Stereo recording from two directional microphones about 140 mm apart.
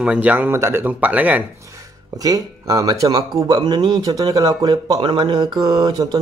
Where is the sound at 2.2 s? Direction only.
25° right (ahead or behind).